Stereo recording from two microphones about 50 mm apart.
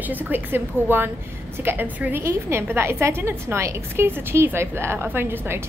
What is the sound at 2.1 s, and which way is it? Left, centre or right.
A woman's voice, right.